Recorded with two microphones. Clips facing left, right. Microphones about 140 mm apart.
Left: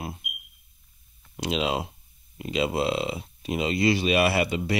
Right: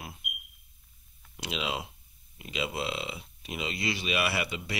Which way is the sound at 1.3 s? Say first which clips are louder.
Left 8 dB; 35° left (ahead or behind).